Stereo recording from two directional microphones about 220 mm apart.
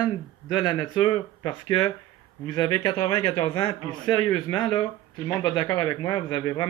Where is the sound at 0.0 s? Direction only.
20° left (ahead or behind).